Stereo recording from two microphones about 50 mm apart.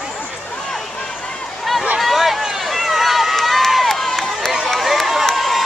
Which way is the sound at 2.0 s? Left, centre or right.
Centre.